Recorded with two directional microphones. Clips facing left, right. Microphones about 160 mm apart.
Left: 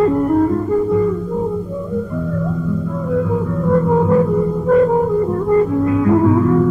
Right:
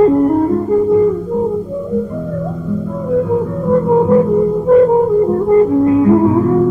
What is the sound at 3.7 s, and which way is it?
Music, 25° right (ahead or behind).